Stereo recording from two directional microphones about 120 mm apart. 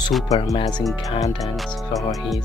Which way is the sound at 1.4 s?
Centre (ahead or behind).